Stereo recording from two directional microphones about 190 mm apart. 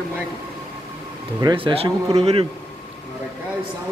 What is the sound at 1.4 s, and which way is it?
A man's voice, 25° right (ahead or behind).